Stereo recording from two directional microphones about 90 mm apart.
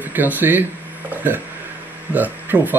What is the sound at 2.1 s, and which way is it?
Speech, 20° right (ahead or behind).